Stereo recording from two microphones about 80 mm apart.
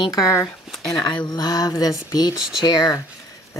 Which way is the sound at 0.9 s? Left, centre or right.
Left.